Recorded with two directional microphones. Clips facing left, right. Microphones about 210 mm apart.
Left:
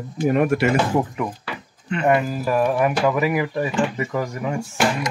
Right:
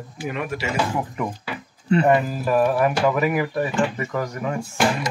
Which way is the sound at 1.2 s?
10° right (ahead or behind).